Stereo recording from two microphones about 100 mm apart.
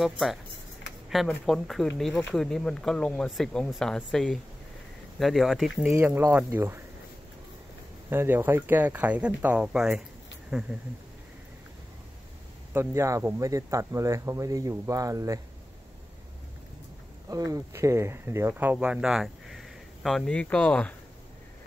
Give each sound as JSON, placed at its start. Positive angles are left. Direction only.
{"t": 0.0, "sound": "speech", "side_deg": 0}
{"t": 5.9, "sound": "speech", "side_deg": -20}
{"t": 8.1, "sound": "speech", "side_deg": -20}
{"t": 12.7, "sound": "speech", "side_deg": -30}
{"t": 17.3, "sound": "speech", "side_deg": -35}